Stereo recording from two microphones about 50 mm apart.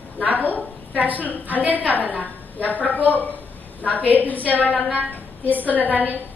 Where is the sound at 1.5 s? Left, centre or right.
Right.